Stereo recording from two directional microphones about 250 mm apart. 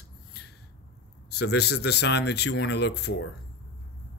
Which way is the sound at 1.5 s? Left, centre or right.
Left.